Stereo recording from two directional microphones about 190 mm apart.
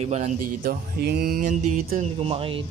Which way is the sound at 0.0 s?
35° right (ahead or behind).